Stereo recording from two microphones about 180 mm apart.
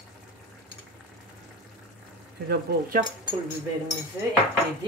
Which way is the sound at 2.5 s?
55° right (ahead or behind).